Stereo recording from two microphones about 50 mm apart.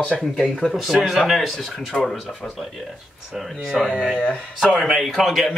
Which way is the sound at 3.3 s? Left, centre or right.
Centre.